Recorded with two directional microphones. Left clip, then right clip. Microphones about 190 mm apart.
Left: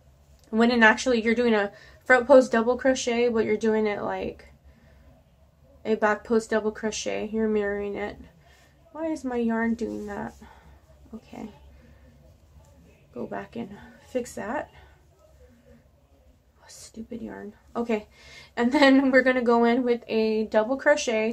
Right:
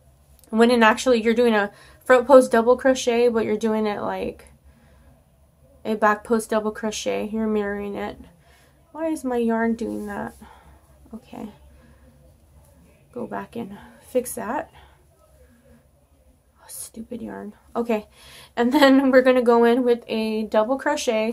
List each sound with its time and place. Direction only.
0.5 s speech: 25° right (ahead or behind)
5.8 s speech: 25° right (ahead or behind)
13.1 s speech: 25° right (ahead or behind)
16.6 s speech: 25° right (ahead or behind)